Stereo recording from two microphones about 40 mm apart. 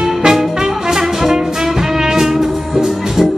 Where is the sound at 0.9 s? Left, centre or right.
Centre.